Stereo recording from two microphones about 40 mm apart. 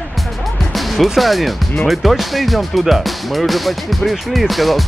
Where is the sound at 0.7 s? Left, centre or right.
Centre.